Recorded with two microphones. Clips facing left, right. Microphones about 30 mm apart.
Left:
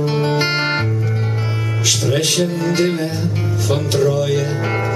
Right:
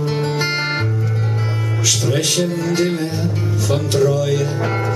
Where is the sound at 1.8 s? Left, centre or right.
Centre.